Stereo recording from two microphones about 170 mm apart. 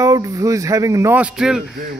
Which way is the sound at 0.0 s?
20° right (ahead or behind).